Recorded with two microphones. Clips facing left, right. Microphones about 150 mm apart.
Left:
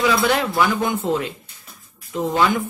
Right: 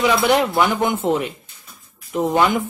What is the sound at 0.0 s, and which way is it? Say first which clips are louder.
Speech: right 2 dB; 20° right (ahead or behind).